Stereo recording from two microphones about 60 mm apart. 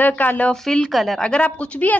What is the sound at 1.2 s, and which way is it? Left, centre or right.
Speech, centre.